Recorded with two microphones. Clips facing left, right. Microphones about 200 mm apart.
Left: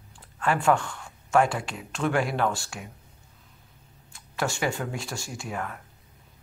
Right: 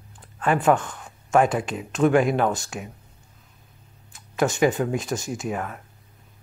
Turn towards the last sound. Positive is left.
turn(degrees=-20)  # may be behind; listen again after turning